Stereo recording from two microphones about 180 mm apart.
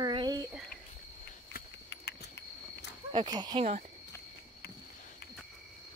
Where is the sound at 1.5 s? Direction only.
70° left (ahead or behind).